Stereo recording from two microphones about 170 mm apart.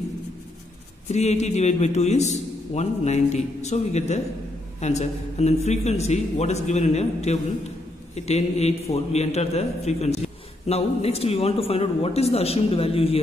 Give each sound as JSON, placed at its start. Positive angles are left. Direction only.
{"t": 1.0, "sound": "a man's voice", "side_deg": 40}